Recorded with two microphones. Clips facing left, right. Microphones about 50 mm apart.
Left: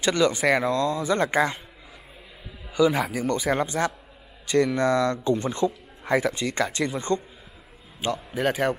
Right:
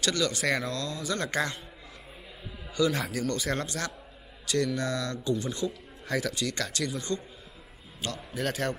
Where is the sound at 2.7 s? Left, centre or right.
Centre.